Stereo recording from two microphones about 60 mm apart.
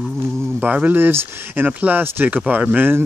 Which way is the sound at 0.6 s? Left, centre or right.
Right.